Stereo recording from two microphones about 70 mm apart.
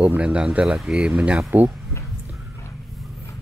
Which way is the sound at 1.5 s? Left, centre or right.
Right.